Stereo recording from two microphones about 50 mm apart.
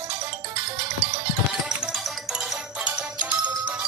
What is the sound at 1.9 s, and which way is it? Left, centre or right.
Music, centre.